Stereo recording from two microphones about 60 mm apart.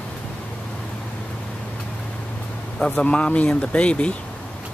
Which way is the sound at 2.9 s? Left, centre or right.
Centre.